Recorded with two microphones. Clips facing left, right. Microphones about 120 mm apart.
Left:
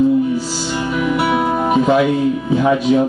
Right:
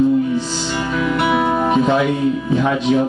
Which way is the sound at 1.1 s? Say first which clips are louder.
Right 1 dB; 5° left (ahead or behind).